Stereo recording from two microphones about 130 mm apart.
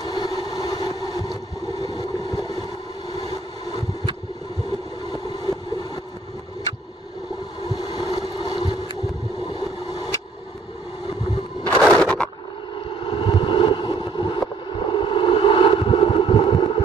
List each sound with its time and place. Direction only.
0.0 s vehicle: 30° left (ahead or behind)
4.6 s a sound: 30° left (ahead or behind)
7.6 s boat: 30° left (ahead or behind)
9.5 s vehicle: 30° left (ahead or behind)
11.8 s a sound: 5° left (ahead or behind)
12.7 s vehicle: 40° left (ahead or behind)